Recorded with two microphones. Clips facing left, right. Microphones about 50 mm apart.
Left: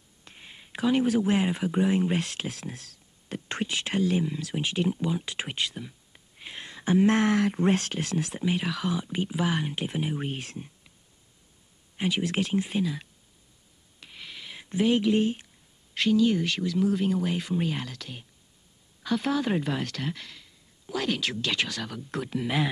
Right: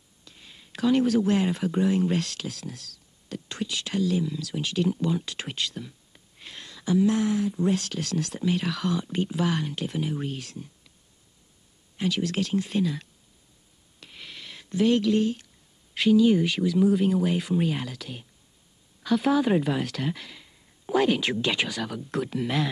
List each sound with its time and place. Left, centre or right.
0.2 s speech: left
6.8 s speech: left
7.6 s speech: left
12.0 s speech: left
12.7 s speech: centre
13.9 s a sound: centre
14.6 s speech: centre
15.9 s speech: centre
20.8 s a sound: right
21.1 s speech: centre